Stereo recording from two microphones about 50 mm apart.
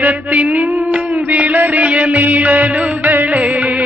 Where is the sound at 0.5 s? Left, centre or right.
Right.